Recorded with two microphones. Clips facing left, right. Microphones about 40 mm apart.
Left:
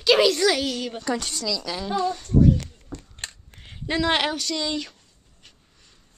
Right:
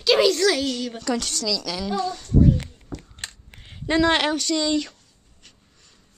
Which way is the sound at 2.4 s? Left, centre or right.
Right.